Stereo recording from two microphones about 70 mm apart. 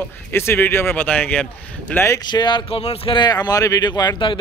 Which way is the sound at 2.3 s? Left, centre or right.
Left.